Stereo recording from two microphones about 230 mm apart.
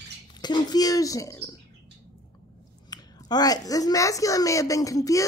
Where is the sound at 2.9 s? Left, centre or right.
Centre.